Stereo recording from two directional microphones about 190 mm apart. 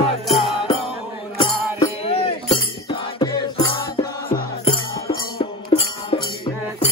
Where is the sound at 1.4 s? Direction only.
25° left (ahead or behind).